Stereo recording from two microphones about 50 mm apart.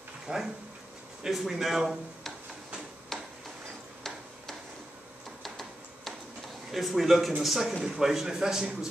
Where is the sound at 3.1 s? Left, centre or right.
Centre.